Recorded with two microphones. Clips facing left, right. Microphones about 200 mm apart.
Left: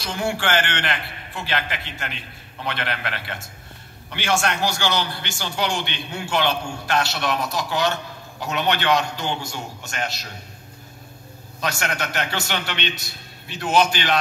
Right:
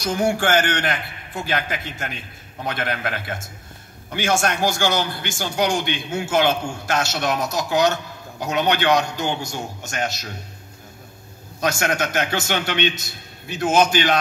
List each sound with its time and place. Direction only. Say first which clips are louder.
0.0 s a man's voice: right 5 dB; 45° right (ahead or behind)
11.6 s a man's voice: right 5 dB; 45° right (ahead or behind)